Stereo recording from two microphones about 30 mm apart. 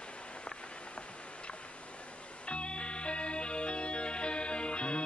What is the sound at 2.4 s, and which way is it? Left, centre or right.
Music, left.